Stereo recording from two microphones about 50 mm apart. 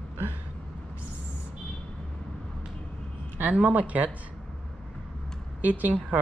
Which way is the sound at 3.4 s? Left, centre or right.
Right.